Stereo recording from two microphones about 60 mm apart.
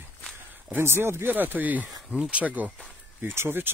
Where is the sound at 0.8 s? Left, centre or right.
Right.